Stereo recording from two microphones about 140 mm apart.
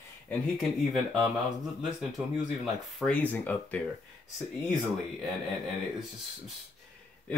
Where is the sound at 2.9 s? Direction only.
10° left (ahead or behind).